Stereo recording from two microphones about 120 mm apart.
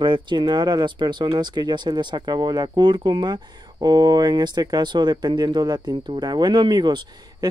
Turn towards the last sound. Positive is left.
turn(degrees=-35)  # may be behind; listen again after turning